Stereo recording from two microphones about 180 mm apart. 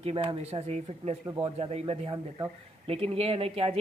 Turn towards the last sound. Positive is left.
turn(degrees=-35)  # may be behind; listen again after turning